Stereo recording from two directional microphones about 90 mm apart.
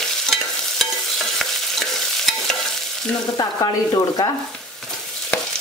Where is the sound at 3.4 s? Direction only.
45° left (ahead or behind).